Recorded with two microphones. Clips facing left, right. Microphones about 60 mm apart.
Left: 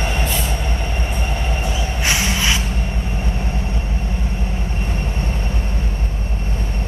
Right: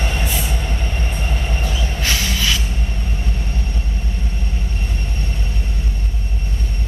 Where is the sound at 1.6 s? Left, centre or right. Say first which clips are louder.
Left 2 dB; centre.